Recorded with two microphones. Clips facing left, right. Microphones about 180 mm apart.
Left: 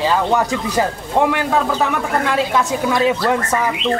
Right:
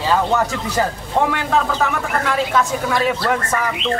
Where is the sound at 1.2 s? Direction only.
15° left (ahead or behind).